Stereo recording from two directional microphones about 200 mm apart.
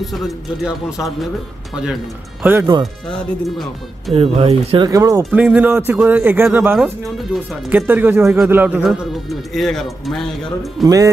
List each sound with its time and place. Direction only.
0.8 s speech: centre (ahead or behind)
2.4 s a man's voice: 10° right (ahead or behind)
2.8 s speech: centre (ahead or behind)
4.1 s speech: 30° right (ahead or behind)
5.2 s a man's voice: 5° right (ahead or behind)